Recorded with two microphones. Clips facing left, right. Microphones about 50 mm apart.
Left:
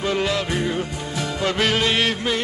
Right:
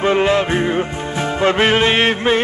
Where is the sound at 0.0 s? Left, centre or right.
Right.